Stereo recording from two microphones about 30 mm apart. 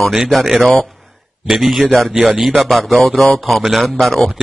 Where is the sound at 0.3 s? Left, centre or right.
Centre.